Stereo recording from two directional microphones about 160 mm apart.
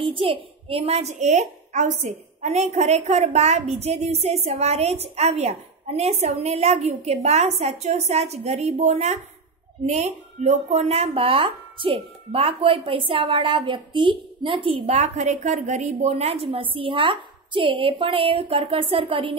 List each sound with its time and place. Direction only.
0.0 s a woman's voice: 35° right (ahead or behind)
15.0 s a woman's voice: 45° right (ahead or behind)